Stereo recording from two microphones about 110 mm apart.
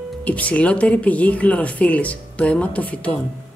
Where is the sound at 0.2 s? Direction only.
15° left (ahead or behind).